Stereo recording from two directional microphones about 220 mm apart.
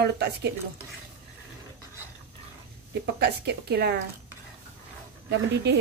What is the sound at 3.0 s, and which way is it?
Speech, 50° right (ahead or behind).